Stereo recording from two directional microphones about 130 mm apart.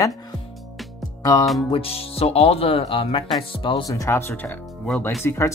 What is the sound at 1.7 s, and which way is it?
Speech, 50° left (ahead or behind).